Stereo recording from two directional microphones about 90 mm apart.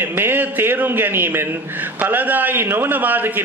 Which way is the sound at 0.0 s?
25° right (ahead or behind).